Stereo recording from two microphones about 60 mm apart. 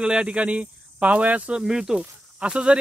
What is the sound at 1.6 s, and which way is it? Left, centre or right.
Speech, centre.